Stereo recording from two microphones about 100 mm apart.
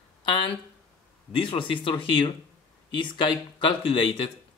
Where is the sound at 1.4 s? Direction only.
60° left (ahead or behind).